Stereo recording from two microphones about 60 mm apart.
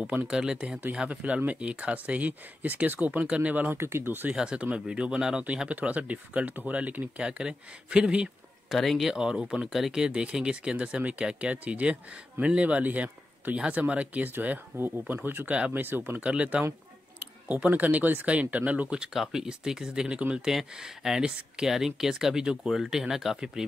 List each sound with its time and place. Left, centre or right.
0.3 s speech: centre
3.7 s speech: right
4.3 s speech: centre
8.6 s speech: centre; by 15.8 s right
15.8 s speech: right
16.2 s speech: right
19.3 s speech: centre
21.6 s speech: centre